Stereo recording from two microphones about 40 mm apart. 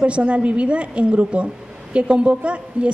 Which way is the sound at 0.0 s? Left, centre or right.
Right.